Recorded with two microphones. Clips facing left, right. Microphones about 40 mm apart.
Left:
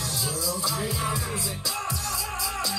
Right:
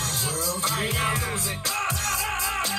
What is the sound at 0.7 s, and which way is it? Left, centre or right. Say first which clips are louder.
Music: right 5 dB; right.